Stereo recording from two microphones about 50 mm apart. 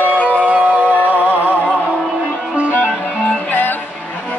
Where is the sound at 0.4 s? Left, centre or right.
Right.